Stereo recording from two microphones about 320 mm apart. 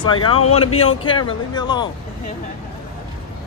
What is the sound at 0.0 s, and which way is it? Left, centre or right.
Speech, centre.